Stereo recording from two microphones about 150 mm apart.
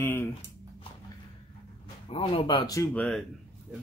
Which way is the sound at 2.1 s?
40° left (ahead or behind).